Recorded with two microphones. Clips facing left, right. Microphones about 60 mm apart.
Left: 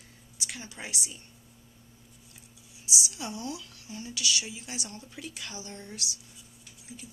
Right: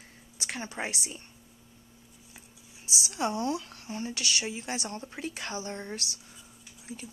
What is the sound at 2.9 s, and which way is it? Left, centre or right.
Speech, right.